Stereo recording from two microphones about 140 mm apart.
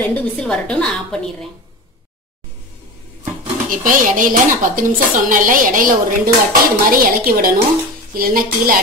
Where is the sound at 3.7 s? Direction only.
75° right (ahead or behind).